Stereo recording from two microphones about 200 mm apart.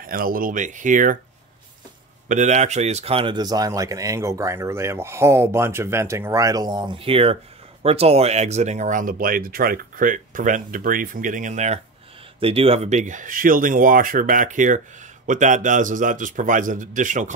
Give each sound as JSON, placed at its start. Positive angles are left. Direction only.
{"t": 0.0, "sound": "speech", "side_deg": -45}
{"t": 2.2, "sound": "a man's voice", "side_deg": -35}